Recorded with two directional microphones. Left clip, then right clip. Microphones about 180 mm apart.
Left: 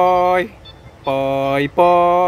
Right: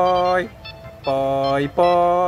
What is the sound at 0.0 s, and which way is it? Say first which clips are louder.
Vehicle: left 3 dB; 25° left (ahead or behind).